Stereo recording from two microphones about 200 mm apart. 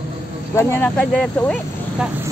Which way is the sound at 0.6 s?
10° left (ahead or behind).